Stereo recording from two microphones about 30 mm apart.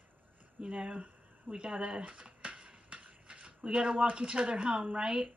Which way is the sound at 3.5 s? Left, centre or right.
Right.